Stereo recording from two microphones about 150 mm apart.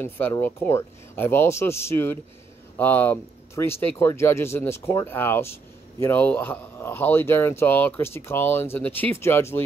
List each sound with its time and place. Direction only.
0.0 s speech: 15° left (ahead or behind)